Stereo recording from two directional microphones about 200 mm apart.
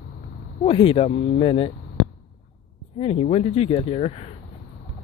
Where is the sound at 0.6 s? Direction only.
25° left (ahead or behind).